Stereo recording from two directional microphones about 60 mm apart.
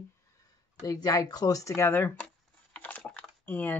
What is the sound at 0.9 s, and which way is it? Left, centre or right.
Speech, left.